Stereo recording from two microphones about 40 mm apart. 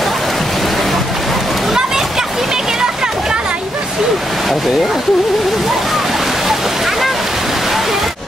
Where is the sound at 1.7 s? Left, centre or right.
Centre.